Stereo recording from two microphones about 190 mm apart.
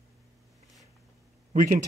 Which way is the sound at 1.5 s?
45° right (ahead or behind).